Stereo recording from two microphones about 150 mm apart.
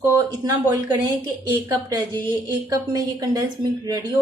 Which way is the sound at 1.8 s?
25° right (ahead or behind).